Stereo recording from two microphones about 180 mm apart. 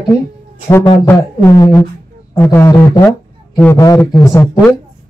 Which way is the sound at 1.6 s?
20° left (ahead or behind).